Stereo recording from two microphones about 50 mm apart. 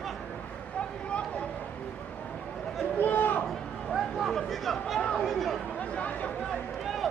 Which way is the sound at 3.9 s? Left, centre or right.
Centre.